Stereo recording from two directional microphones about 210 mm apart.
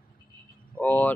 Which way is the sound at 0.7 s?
10° left (ahead or behind).